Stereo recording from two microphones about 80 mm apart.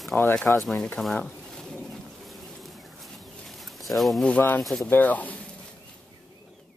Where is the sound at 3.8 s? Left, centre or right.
Centre.